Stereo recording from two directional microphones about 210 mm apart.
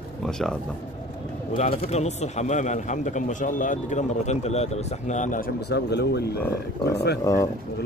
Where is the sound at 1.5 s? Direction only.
30° left (ahead or behind); by 7.2 s 50° left (ahead or behind).